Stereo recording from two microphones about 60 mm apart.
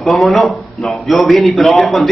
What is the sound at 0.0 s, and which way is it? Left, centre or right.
A man's voice, centre.